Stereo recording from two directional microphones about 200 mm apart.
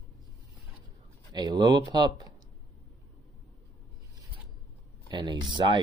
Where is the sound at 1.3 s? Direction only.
20° right (ahead or behind).